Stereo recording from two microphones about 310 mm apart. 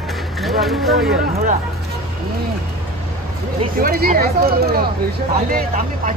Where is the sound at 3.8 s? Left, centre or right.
Right.